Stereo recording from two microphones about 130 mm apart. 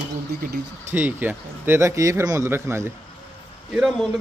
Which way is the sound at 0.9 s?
15° right (ahead or behind).